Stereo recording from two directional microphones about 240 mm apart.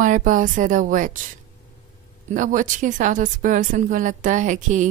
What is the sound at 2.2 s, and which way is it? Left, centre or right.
Speech, right.